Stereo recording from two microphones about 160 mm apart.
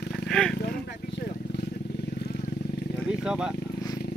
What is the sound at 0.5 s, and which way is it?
Vehicle, 90° left.